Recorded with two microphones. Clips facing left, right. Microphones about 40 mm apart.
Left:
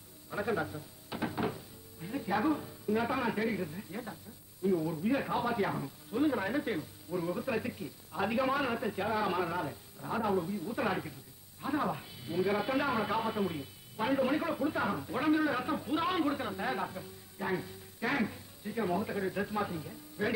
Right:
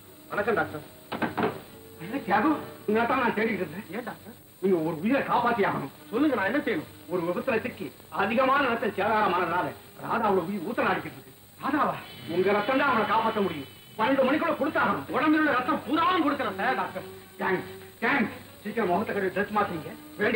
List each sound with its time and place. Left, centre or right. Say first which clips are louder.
0.3 s speech: right 7 dB; right